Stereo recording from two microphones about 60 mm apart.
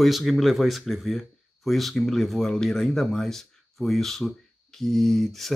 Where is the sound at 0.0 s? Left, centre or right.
Centre.